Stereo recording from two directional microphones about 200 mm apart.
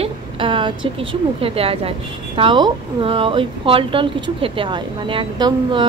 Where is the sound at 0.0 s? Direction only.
25° right (ahead or behind).